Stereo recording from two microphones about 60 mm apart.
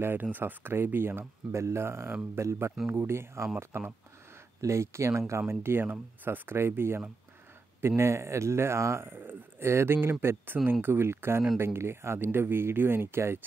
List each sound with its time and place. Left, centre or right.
0.0 s speech: right
4.6 s speech: right
5.5 s speech: right
9.7 s speech: right